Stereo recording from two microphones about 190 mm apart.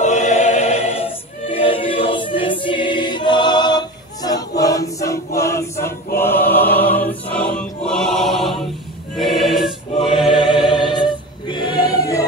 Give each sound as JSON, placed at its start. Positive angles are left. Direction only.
{"t": 0.0, "sound": "choir", "side_deg": 40}
{"t": 10.3, "sound": "choir", "side_deg": 25}